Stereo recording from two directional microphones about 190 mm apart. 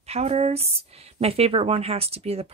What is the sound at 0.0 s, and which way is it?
Speech, 35° right (ahead or behind).